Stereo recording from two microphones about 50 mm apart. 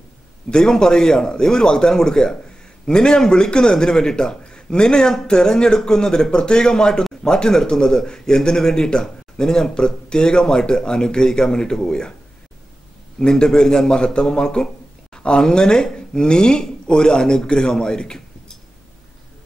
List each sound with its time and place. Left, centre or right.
0.5 s a man's voice: centre
13.2 s a man's voice: centre